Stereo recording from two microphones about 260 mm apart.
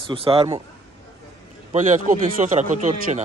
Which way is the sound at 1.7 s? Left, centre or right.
Right.